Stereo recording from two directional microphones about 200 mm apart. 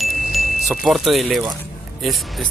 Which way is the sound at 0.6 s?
Centre (ahead or behind).